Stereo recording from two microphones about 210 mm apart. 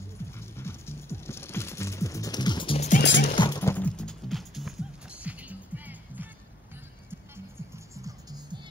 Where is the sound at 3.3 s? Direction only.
20° left (ahead or behind); by 6.3 s 10° right (ahead or behind).